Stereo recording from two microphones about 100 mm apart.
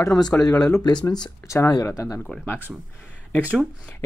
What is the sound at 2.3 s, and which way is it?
Speech, 15° left (ahead or behind).